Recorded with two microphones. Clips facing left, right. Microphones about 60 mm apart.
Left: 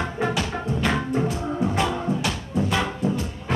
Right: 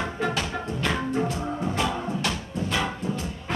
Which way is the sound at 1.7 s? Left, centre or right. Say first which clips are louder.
Left 3 dB; centre.